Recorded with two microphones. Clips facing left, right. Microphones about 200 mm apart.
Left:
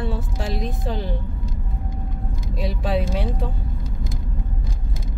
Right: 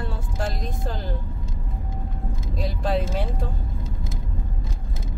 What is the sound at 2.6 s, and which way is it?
Speech, centre (ahead or behind).